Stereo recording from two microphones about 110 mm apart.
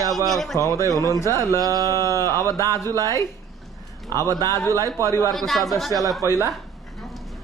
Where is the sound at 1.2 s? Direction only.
25° left (ahead or behind).